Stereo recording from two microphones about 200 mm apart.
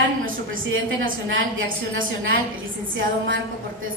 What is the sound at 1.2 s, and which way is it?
A woman's voice, 80° right.